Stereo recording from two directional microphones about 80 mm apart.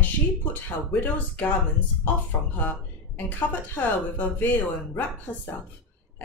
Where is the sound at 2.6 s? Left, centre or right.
Left.